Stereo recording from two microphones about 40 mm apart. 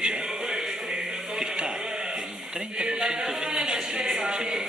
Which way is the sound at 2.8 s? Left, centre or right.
Centre.